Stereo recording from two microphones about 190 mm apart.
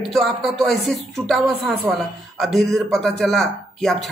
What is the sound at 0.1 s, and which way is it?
A man's voice, centre (ahead or behind).